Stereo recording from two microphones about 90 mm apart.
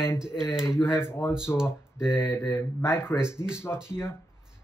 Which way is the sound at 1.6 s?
10° right (ahead or behind).